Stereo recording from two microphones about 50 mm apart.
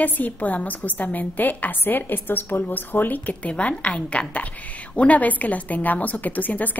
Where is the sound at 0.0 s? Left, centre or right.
Left.